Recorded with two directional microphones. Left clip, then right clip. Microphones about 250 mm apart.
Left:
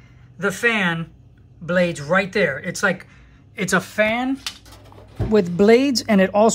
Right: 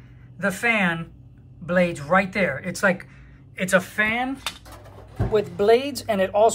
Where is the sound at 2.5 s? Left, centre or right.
Centre.